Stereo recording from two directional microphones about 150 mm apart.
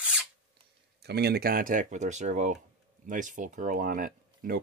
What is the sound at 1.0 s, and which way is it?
Speech, 90° right.